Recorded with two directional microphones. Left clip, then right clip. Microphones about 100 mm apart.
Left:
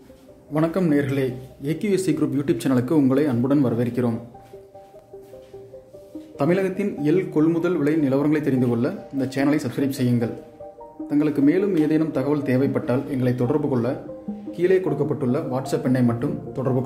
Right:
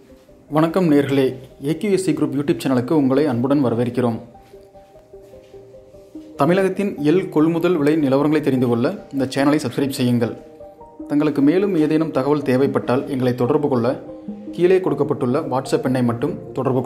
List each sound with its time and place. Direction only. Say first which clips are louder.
0.5 s speech: right 5 dB; 15° right (ahead or behind)
1.6 s speech: right 3 dB; centre (ahead or behind)
6.3 s speech: right 5 dB; 15° right (ahead or behind)